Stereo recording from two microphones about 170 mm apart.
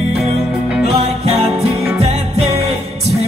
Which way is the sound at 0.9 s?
35° right (ahead or behind).